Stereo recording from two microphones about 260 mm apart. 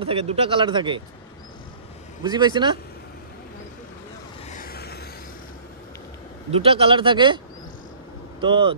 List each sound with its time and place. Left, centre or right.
0.0 s speech: right
2.2 s speech: centre
4.5 s a sound: left
6.5 s speech: right
8.4 s speech: centre